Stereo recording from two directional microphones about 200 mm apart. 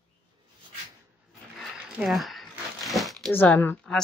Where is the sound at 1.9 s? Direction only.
Centre (ahead or behind).